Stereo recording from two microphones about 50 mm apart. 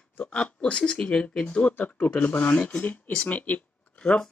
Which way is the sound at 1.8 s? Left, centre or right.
Left.